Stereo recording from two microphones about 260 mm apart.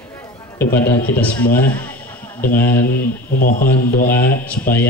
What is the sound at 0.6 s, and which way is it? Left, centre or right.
A man's voice, centre.